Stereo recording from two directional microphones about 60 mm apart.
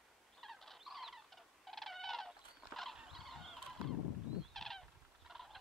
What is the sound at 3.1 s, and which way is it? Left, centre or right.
Fowl, centre.